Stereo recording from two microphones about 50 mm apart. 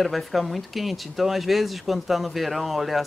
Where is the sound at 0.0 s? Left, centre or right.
Centre.